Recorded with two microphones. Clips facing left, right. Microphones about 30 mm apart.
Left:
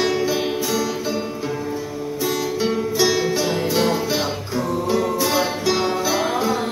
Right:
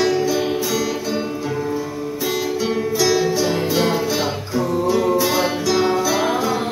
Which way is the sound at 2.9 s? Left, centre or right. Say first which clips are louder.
Right 2 dB; centre.